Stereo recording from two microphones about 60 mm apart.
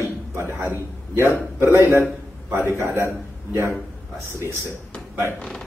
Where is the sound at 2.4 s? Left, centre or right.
Right.